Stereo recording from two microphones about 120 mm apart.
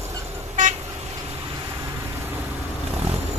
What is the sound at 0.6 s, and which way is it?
Vehicle, 90° right.